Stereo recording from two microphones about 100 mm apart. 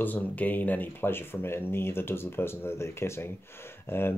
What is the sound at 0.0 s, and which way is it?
Speech, 15° left (ahead or behind).